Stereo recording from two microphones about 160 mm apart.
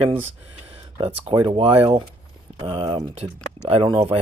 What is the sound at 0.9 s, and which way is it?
Speech, 35° right (ahead or behind).